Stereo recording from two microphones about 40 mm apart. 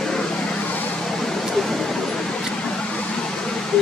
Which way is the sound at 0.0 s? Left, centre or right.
Centre.